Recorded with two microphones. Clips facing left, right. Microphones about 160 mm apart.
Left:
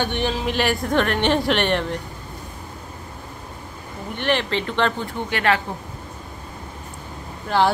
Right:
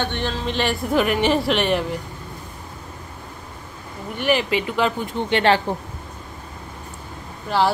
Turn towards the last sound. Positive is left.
turn(degrees=0)  # may be behind; listen again after turning